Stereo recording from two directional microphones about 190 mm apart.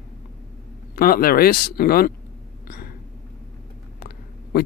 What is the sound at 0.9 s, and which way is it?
Speech, 50° left (ahead or behind).